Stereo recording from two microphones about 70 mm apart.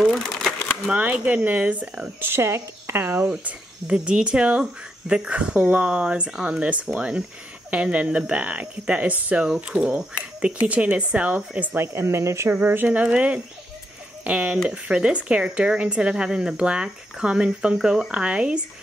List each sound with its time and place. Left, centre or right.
0.0 s a sound: centre
0.9 s speech: centre
3.3 s speech: centre
11.8 s speech: right
12.4 s speech: right; by 18.1 s centre
18.1 s speech: centre